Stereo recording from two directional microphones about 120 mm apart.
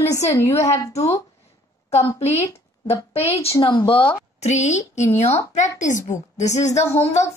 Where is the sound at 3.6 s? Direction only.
40° left (ahead or behind).